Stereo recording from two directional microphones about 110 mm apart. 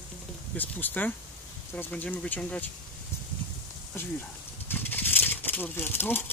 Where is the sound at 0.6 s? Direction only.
15° left (ahead or behind).